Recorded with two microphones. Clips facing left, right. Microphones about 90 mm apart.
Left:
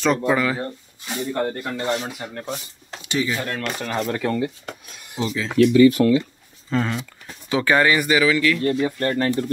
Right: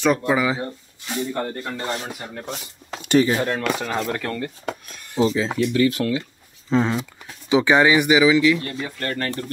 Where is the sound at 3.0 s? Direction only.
45° right (ahead or behind).